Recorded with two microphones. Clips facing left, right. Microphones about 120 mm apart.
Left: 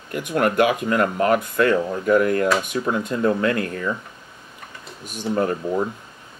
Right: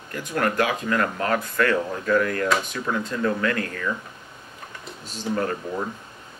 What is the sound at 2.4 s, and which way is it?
Speech, 5° left (ahead or behind).